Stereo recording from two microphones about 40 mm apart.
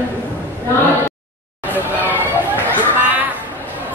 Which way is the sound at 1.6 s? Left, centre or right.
Left.